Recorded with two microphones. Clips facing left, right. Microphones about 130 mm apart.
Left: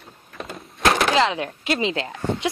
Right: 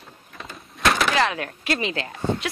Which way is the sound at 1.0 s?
25° left (ahead or behind).